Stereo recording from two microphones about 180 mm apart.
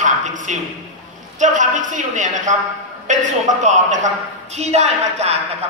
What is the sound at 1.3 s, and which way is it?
A woman's voice, 45° right (ahead or behind).